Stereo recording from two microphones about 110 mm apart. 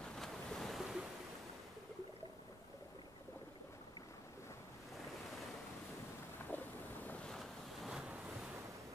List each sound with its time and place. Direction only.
0.0 s waves: 5° left (ahead or behind)
6.5 s boat: 15° left (ahead or behind)
7.2 s waves: centre (ahead or behind)